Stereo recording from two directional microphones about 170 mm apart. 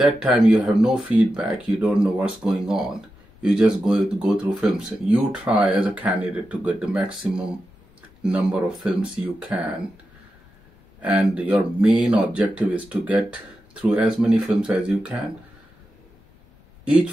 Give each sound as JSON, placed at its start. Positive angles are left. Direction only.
{"t": 0.5, "sound": "speech", "side_deg": -5}
{"t": 11.0, "sound": "speech", "side_deg": -10}
{"t": 16.8, "sound": "speech", "side_deg": -5}